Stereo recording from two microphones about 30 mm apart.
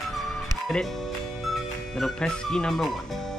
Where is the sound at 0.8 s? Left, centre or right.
Centre.